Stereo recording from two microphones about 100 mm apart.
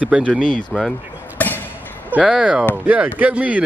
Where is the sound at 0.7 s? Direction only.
15° left (ahead or behind).